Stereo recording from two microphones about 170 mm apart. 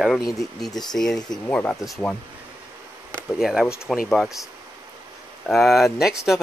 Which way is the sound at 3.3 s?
5° right (ahead or behind).